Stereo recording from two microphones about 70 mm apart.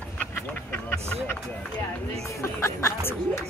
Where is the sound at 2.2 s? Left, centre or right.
Left.